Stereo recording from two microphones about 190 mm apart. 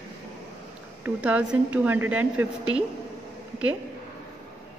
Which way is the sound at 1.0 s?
5° right (ahead or behind).